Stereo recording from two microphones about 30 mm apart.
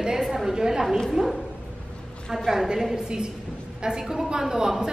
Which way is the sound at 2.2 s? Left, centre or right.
Centre.